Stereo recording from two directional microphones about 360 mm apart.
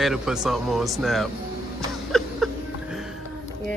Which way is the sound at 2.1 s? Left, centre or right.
Centre.